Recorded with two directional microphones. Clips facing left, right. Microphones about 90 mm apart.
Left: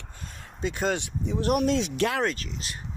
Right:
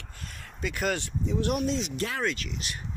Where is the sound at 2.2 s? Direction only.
40° left (ahead or behind).